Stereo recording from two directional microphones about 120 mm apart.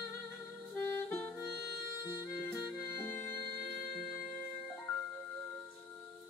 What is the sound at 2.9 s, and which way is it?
Music, 20° left (ahead or behind).